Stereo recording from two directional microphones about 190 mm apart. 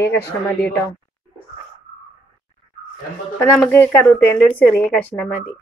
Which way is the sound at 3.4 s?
10° left (ahead or behind).